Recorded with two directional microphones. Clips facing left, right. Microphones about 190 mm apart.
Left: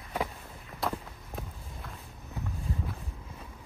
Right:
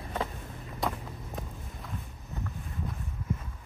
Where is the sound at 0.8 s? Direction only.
Centre (ahead or behind).